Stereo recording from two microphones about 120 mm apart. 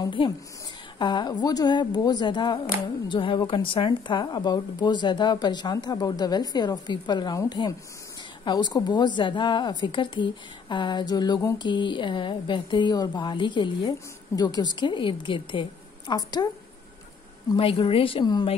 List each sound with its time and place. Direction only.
0.9 s speech: 40° left (ahead or behind)
17.6 s speech: 50° left (ahead or behind)